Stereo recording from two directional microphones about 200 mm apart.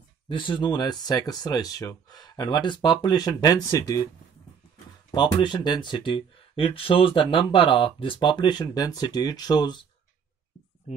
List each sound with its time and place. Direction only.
0.3 s speech: 25° left (ahead or behind)
5.1 s speech: 20° left (ahead or behind)